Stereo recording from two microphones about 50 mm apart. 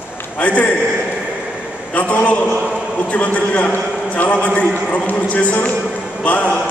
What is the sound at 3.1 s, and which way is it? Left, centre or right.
A man's voice, left.